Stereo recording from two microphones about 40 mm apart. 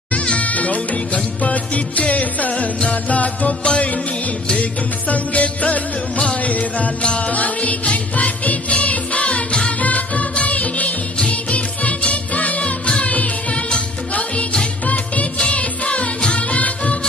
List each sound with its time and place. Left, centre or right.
0.1 s music: left
9.8 s music: left